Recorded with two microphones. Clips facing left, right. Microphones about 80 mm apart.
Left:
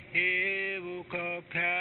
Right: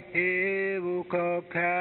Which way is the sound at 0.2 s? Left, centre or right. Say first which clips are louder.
Right 4 dB; right.